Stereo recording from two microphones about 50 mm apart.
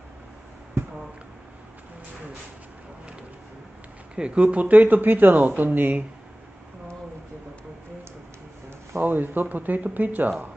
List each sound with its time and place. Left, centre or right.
4.1 s speech: right
9.0 s speech: right